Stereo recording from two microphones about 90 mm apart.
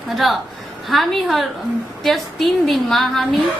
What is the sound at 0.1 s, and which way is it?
A woman's voice, centre (ahead or behind).